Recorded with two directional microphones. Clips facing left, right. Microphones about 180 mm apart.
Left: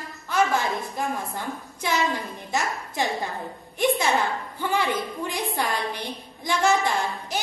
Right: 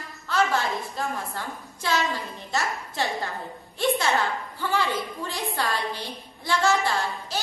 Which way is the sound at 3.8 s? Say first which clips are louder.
Left 1 dB; 15° left (ahead or behind).